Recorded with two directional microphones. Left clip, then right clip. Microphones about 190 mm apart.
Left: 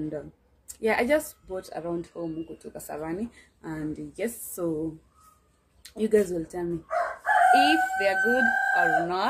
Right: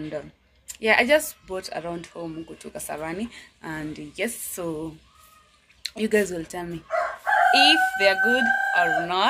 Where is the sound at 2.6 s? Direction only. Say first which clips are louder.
Right 3 dB; centre (ahead or behind).